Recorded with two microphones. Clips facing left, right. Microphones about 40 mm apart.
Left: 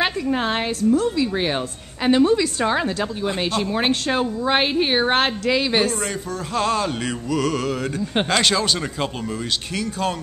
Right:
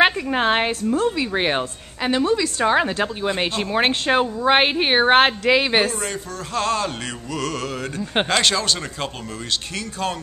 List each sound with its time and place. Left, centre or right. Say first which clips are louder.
0.0 s a woman's voice: right 4 dB; right
2.0 s music: left 3 dB; centre
2.7 s speech: right 3 dB; right
6.5 s music: left 1 dB; centre